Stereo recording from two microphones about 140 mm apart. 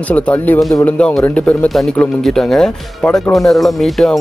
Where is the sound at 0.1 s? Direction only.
10° left (ahead or behind).